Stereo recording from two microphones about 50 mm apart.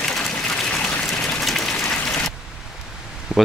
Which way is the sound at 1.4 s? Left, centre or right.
Centre.